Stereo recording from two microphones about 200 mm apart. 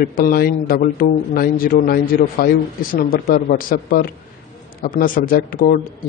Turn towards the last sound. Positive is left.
turn(degrees=45)  # may be behind; listen again after turning